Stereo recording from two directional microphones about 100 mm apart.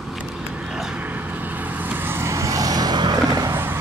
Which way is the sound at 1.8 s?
20° right (ahead or behind).